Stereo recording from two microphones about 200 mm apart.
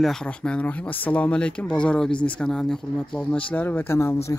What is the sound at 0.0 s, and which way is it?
Speech, 5° left (ahead or behind).